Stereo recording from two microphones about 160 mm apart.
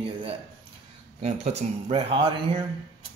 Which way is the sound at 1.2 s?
40° right (ahead or behind).